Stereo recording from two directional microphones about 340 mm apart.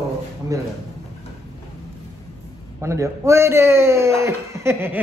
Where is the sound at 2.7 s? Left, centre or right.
Centre.